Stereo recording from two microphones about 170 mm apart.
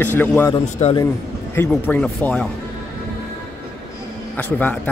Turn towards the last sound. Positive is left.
turn(degrees=10)  # may be behind; listen again after turning